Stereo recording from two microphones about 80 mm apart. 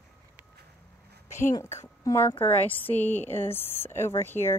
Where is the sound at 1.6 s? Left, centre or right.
Left.